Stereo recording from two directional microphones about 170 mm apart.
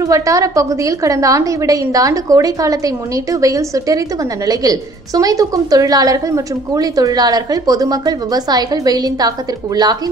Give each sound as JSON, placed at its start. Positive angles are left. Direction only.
{"t": 0.0, "sound": "a woman's voice", "side_deg": -20}